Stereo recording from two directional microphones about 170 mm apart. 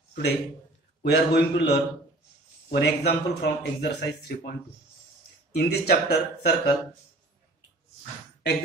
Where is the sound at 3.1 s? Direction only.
65° left (ahead or behind).